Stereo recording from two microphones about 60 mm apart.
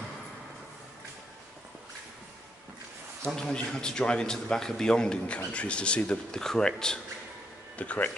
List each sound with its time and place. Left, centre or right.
3.3 s a man's voice: centre
7.7 s speech: left